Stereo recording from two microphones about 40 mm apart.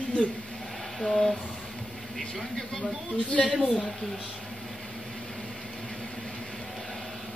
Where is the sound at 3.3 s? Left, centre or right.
Left.